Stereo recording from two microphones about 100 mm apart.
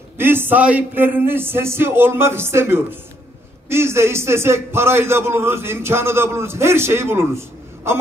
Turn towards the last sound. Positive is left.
turn(degrees=-25)  # may be behind; listen again after turning